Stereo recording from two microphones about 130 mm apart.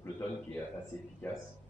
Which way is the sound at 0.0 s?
10° left (ahead or behind).